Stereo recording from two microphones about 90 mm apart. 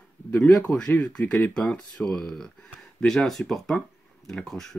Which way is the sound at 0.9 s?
20° left (ahead or behind).